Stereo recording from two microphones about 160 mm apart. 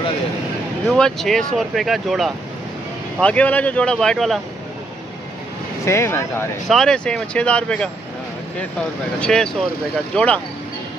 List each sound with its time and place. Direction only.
0.8 s speech: centre (ahead or behind)
5.9 s speech: 15° left (ahead or behind)
6.7 s speech: 5° left (ahead or behind)
9.2 s speech: 5° left (ahead or behind)